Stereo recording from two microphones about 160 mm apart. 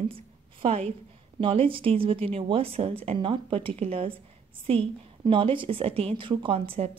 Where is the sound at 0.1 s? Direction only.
35° right (ahead or behind).